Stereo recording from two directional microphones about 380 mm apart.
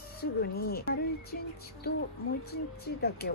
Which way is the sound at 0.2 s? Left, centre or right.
Left.